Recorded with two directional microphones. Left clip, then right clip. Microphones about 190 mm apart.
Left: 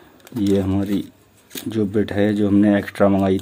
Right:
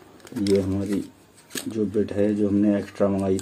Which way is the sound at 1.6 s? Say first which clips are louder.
Left 4 dB; 50° left (ahead or behind).